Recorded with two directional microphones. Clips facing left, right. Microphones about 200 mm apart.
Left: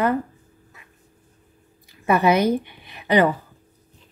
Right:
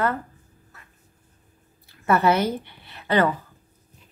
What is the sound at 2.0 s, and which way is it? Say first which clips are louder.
A woman's voice: left 2 dB; 15° left (ahead or behind).